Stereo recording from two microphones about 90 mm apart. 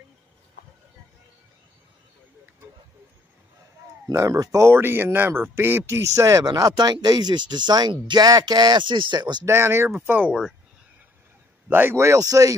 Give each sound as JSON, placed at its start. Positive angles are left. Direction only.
{"t": 4.1, "sound": "speech", "side_deg": -35}
{"t": 8.8, "sound": "speech", "side_deg": -65}
{"t": 9.5, "sound": "speech", "side_deg": -30}
{"t": 11.7, "sound": "speech", "side_deg": -25}